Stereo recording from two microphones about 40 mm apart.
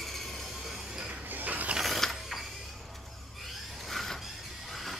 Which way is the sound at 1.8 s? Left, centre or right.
Centre.